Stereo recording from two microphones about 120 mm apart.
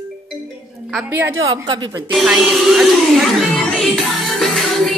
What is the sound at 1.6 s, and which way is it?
Speech, 35° right (ahead or behind).